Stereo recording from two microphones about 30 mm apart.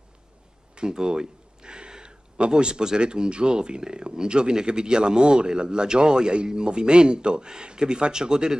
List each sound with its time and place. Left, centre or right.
0.7 s speech: right